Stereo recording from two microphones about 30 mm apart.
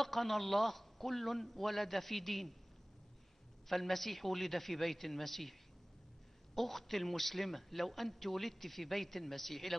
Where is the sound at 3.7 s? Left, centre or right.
Centre.